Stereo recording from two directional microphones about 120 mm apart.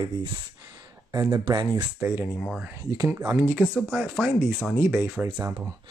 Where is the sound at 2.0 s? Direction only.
20° right (ahead or behind).